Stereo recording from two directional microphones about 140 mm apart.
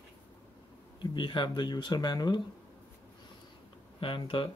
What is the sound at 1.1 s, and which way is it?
Speech, 35° left (ahead or behind).